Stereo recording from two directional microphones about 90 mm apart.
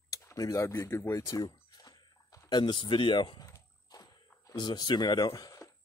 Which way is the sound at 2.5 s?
55° left (ahead or behind).